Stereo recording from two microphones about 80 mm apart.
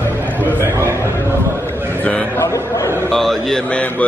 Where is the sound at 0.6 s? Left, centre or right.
Right.